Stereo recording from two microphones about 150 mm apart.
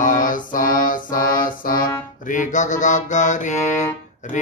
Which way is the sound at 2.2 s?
55° left (ahead or behind).